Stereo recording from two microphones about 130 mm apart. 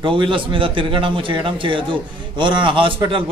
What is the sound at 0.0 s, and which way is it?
A man's voice, 40° right (ahead or behind).